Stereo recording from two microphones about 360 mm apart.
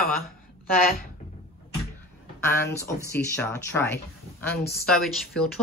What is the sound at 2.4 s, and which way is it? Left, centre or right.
Speech, centre.